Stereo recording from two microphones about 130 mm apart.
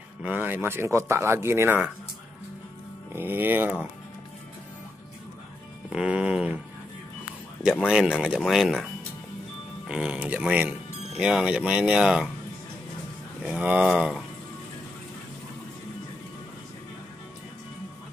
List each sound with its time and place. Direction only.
0.2 s speech: 15° right (ahead or behind)
3.1 s speech: 15° right (ahead or behind)
5.9 s speech: 10° right (ahead or behind)
7.8 s speech: 5° right (ahead or behind)
9.8 s speech: 5° right (ahead or behind)
13.4 s speech: 10° right (ahead or behind)